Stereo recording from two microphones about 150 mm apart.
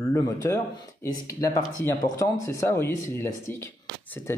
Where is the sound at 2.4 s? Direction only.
20° left (ahead or behind).